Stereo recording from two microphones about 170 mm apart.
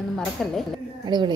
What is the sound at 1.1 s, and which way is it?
Speech, 25° right (ahead or behind).